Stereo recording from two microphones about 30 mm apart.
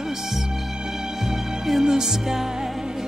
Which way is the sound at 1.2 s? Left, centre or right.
Centre.